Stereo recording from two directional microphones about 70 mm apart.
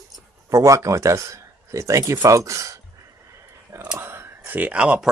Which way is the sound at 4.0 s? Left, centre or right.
Right.